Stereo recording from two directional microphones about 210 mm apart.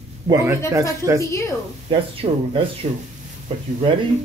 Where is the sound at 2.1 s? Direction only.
25° right (ahead or behind).